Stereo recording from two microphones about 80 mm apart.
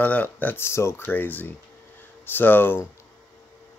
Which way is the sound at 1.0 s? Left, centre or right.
Left.